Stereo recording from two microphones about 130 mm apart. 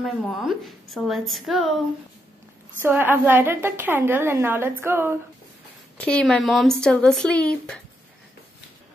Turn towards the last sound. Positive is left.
turn(degrees=10)  # may be behind; listen again after turning